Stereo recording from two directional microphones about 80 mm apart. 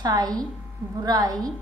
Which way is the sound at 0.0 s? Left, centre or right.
Right.